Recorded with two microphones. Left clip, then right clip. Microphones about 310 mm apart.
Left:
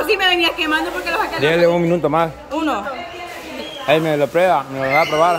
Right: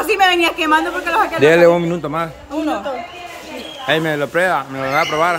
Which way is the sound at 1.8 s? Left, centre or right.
Centre.